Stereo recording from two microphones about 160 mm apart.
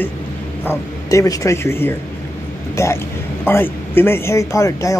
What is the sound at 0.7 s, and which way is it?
Speech, 20° left (ahead or behind).